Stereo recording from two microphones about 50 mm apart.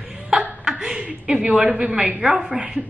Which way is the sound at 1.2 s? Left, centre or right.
Right.